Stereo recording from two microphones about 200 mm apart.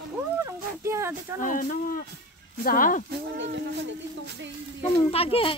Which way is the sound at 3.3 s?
60° right (ahead or behind).